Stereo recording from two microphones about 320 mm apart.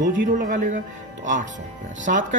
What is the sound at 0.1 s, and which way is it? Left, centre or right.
Speech, right.